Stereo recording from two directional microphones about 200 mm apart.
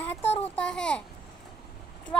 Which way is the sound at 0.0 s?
10° left (ahead or behind).